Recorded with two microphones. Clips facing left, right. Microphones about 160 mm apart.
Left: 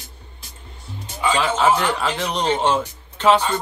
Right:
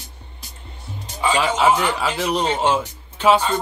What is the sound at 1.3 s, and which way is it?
Speech, 15° right (ahead or behind).